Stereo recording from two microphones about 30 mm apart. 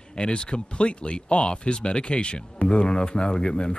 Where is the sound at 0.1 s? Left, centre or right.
Left.